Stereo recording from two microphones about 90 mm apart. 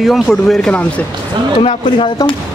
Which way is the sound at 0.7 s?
15° left (ahead or behind).